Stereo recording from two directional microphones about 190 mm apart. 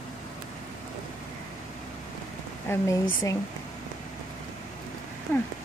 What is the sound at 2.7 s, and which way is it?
Speech, 15° left (ahead or behind).